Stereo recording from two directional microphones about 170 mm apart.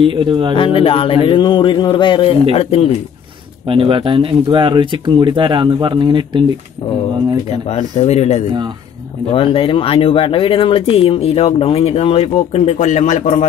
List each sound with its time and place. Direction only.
0.0 s speech: 30° right (ahead or behind)
0.6 s speech: 35° left (ahead or behind)
3.6 s speech: 30° right (ahead or behind)
7.7 s speech: 40° left (ahead or behind)